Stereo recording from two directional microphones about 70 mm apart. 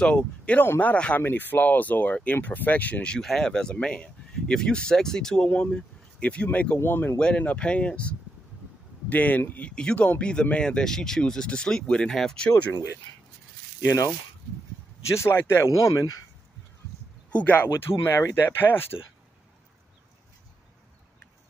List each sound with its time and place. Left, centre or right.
0.0 s speech: centre
5.5 s speech: left
6.8 s speech: left
7.2 s speech: centre
13.8 s speech: left
15.1 s speech: left
15.9 s speech: left
17.3 s speech: left